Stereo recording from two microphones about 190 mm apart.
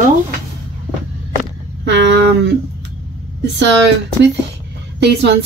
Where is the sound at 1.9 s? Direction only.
65° right (ahead or behind).